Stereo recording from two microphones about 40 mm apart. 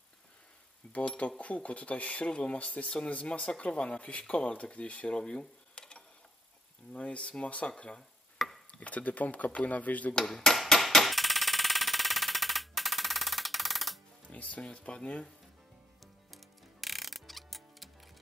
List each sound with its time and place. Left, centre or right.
0.9 s speech: left
5.1 s a sound: left
6.9 s speech: left
8.4 s chopping: centre
8.7 s speech: left
10.1 s dishes: centre
10.7 s a sound: centre
14.3 s speech: left
16.3 s ratchet: centre